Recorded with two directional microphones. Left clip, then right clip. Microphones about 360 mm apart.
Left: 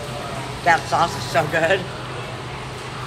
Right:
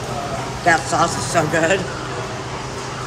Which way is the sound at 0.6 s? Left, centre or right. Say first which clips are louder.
Right 1 dB; centre.